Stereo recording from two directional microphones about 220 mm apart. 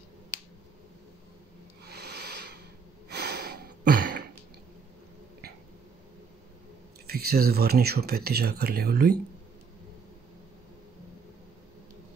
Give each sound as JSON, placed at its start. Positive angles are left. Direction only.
{"t": 1.9, "sound": "rub", "side_deg": -45}
{"t": 3.1, "sound": "a sound", "side_deg": -45}
{"t": 7.1, "sound": "speech", "side_deg": -45}